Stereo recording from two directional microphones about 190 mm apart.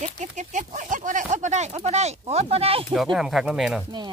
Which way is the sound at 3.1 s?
Centre (ahead or behind).